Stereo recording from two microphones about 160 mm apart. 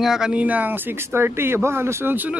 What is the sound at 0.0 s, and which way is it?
Speech, 5° right (ahead or behind).